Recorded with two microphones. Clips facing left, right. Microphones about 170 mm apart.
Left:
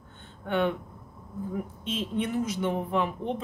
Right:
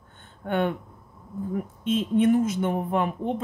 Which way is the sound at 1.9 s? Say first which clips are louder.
Right 10 dB; 50° right (ahead or behind).